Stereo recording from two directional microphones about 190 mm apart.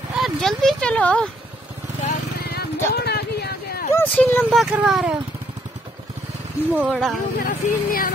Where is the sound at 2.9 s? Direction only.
60° left (ahead or behind).